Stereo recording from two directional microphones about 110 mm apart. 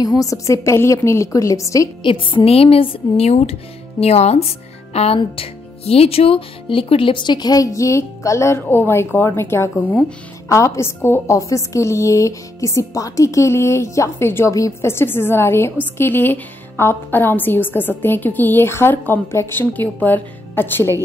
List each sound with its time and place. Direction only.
0.0 s speech: 35° left (ahead or behind)
2.0 s a woman's voice: 50° left (ahead or behind)
3.3 s speech: 70° left (ahead or behind); by 20.9 s 20° left (ahead or behind)